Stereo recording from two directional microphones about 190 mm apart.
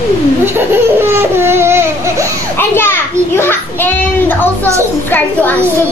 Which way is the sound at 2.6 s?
10° left (ahead or behind).